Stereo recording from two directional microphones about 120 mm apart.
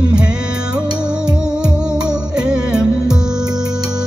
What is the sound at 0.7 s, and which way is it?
Music, 10° right (ahead or behind).